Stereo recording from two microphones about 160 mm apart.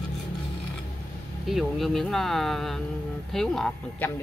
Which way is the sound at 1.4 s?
Centre (ahead or behind).